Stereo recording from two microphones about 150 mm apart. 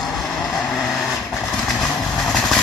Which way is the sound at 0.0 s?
Centre (ahead or behind).